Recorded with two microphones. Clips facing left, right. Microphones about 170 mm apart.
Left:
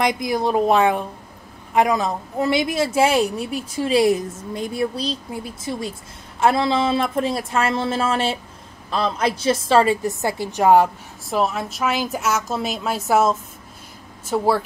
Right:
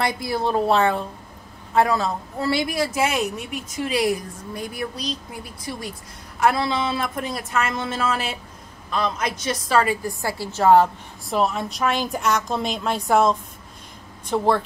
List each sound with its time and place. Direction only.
0.0 s a woman's voice: 15° left (ahead or behind)
11.2 s a woman's voice: centre (ahead or behind)